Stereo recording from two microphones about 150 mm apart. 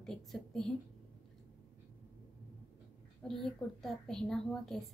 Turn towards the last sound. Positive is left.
turn(degrees=0)  # may be behind; listen again after turning